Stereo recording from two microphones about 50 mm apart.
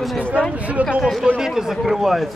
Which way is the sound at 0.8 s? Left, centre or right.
Right.